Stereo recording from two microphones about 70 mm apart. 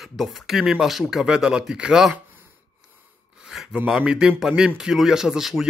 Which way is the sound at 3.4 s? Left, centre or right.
Centre.